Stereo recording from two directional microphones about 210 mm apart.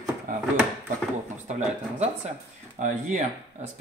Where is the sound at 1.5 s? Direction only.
35° right (ahead or behind).